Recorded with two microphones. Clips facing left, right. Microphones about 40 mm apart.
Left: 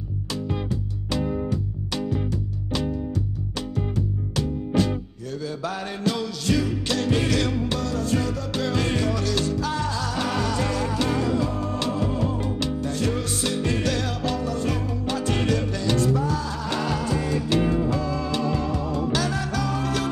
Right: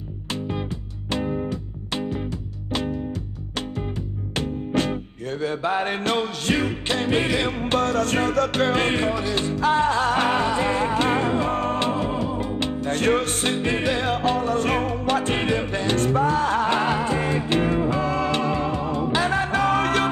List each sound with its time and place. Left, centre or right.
3.9 s music: right
7.5 s music: right
11.5 s music: right
11.8 s music: right
12.2 s music: centre
12.5 s music: right
15.3 s music: right
18.1 s music: right